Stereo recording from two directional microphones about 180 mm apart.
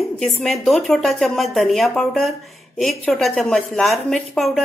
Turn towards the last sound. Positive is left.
turn(degrees=0)  # may be behind; listen again after turning